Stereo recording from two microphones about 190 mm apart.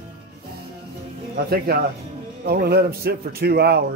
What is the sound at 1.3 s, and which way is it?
Speech, 55° right (ahead or behind).